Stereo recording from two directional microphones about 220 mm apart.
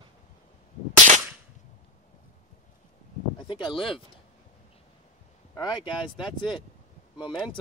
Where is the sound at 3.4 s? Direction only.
20° left (ahead or behind).